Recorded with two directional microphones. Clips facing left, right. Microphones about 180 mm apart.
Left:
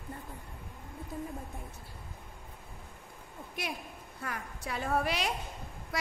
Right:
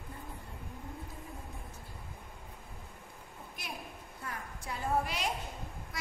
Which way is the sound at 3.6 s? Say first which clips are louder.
Left 9 dB; 70° left (ahead or behind).